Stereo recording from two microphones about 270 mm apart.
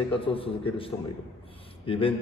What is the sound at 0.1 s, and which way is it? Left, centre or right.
A man's voice, centre.